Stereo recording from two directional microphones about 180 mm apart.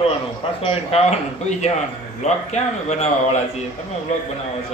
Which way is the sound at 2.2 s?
40° left (ahead or behind).